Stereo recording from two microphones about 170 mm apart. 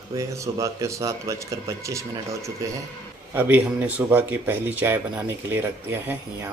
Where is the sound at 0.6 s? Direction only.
20° right (ahead or behind).